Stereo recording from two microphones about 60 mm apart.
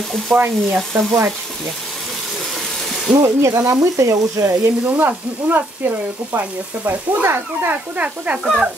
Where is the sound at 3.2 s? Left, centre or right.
Right.